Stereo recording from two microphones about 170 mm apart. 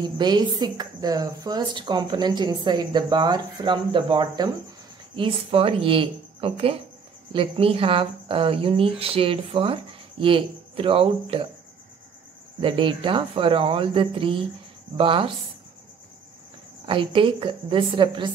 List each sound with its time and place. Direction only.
0.0 s a woman's voice: 25° right (ahead or behind)
12.5 s speech: 30° right (ahead or behind)
16.8 s speech: 30° right (ahead or behind)